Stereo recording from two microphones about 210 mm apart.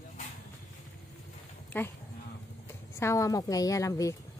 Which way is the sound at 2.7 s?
10° left (ahead or behind).